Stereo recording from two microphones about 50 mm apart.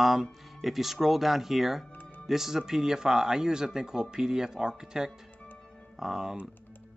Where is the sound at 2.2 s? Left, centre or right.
Centre.